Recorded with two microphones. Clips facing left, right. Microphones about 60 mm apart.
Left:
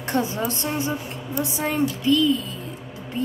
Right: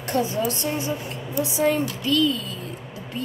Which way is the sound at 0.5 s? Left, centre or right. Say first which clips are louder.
Even; left.